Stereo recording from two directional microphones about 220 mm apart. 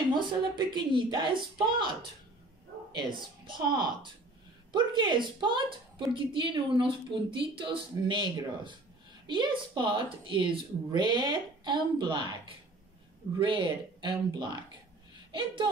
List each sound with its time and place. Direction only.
0.1 s speech: 20° right (ahead or behind)
2.9 s speech: 20° right (ahead or behind)
13.4 s speech: 20° right (ahead or behind)